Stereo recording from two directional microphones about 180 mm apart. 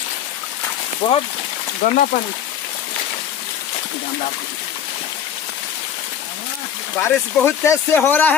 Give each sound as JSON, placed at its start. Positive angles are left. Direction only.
{"t": 1.0, "sound": "speech", "side_deg": 35}
{"t": 7.0, "sound": "speech", "side_deg": 15}